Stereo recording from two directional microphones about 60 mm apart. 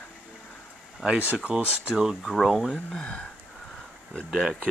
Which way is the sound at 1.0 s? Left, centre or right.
Right.